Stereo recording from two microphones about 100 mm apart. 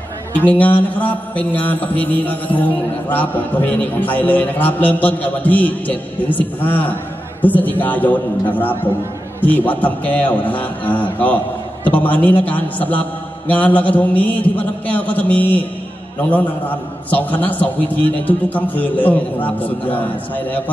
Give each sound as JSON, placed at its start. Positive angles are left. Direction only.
{"t": 0.4, "sound": "mantra", "side_deg": 15}
{"t": 17.1, "sound": "mantra", "side_deg": 15}